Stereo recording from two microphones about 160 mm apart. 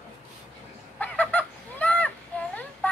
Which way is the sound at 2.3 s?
10° left (ahead or behind).